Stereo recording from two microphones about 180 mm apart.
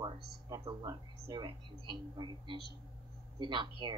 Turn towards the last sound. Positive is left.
turn(degrees=-25)  # may be behind; listen again after turning